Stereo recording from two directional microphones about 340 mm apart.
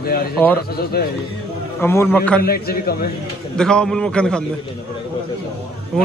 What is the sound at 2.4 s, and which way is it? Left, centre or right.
Speech, left.